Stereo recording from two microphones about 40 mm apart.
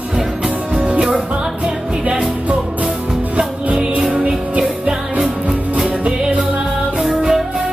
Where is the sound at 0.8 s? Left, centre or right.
Right.